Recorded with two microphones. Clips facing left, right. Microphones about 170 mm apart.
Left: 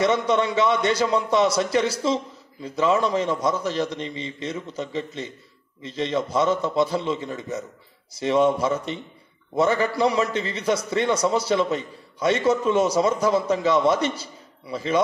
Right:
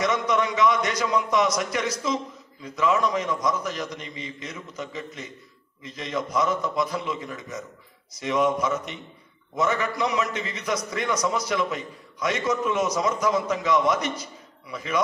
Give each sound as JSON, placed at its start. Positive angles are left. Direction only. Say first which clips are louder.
{"t": 0.0, "sound": "a man's voice", "louder": "left 3 dB", "side_deg": 30}